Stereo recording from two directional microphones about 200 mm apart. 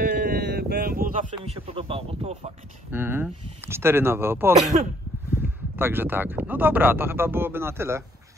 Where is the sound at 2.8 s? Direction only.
10° right (ahead or behind).